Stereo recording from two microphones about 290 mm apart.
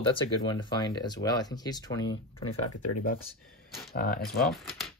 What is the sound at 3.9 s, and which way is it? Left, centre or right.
Speech, left.